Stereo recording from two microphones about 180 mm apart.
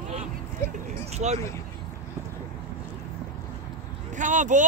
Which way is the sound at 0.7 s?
40° right (ahead or behind).